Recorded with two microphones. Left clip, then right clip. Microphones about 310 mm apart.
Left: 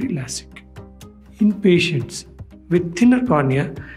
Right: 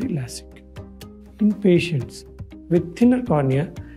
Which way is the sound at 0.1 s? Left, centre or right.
Right.